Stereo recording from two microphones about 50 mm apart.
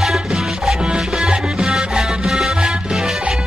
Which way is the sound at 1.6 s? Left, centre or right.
Centre.